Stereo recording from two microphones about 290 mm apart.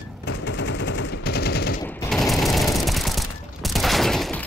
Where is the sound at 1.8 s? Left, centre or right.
Centre.